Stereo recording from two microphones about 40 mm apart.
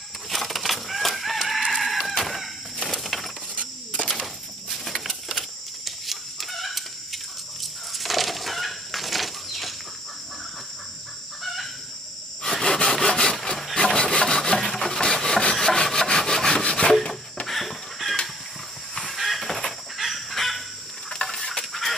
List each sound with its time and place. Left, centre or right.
0.3 s chicken: centre
2.9 s coin: centre
4.1 s a sound: centre
5.9 s chicken: centre
11.4 s chicken: centre
12.6 s sawing: centre
13.7 s wood: left
16.9 s rub: centre
17.5 s chicken: centre
19.1 s a sound: centre
20.0 s fowl: centre
21.1 s a sound: centre